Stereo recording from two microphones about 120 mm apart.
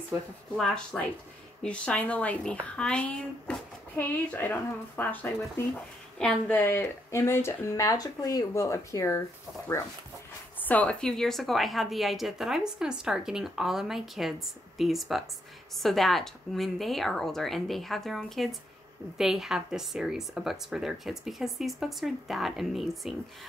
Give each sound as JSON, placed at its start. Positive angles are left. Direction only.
{"t": 0.6, "sound": "a woman's voice", "side_deg": 5}
{"t": 7.1, "sound": "speech", "side_deg": 20}
{"t": 10.6, "sound": "a woman's voice", "side_deg": 10}